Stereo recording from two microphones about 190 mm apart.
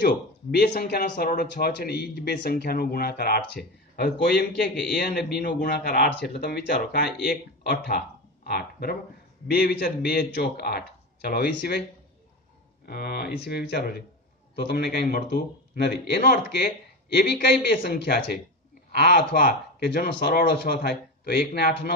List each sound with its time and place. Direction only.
0.0 s speech: 55° left (ahead or behind)
12.8 s speech: 55° left (ahead or behind)